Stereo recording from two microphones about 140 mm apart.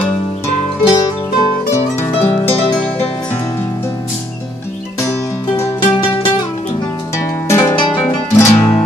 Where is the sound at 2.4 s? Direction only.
45° left (ahead or behind).